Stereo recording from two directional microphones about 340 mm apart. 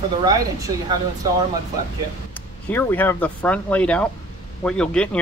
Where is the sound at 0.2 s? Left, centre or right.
Centre.